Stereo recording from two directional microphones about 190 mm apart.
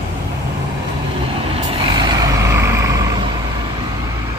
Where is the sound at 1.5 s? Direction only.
20° right (ahead or behind).